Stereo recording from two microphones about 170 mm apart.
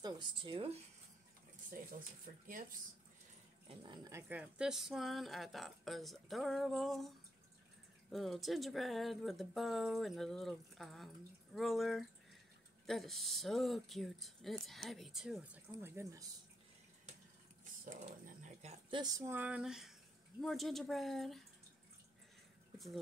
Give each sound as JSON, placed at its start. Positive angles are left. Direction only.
{"t": 0.0, "sound": "speech", "side_deg": -25}
{"t": 1.7, "sound": "speech", "side_deg": -55}
{"t": 3.6, "sound": "speech", "side_deg": -30}
{"t": 8.1, "sound": "speech", "side_deg": 0}
{"t": 17.8, "sound": "speech", "side_deg": -50}